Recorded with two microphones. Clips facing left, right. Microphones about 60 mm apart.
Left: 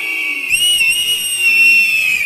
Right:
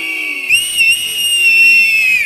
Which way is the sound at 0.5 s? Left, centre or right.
Right.